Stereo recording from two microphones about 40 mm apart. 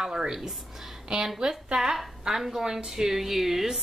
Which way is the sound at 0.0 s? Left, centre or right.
Centre.